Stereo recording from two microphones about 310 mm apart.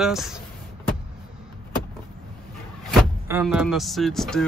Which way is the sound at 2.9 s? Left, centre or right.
Centre.